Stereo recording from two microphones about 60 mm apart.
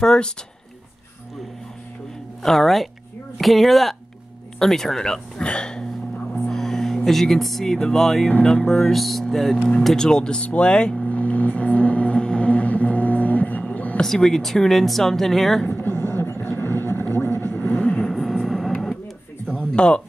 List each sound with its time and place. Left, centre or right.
0.0 s speech: centre
2.4 s speech: centre
6.5 s music: centre
7.1 s speech: centre
11.1 s music: left
13.9 s speech: centre
15.6 s a sound: left
16.5 s vehicle: left
17.5 s vehicle: left
18.4 s vehicle: centre
19.4 s a sound: centre